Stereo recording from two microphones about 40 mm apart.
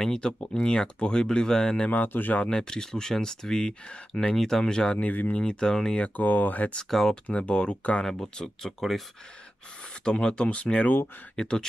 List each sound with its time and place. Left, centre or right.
0.0 s speech: centre
1.9 s speech: left
2.5 s speech: centre
4.4 s speech: centre
4.9 s speech: left
5.4 s speech: left
6.1 s speech: left
6.9 s speech: centre
7.2 s speech: left
8.0 s speech: centre
10.0 s speech: left
10.5 s speech: left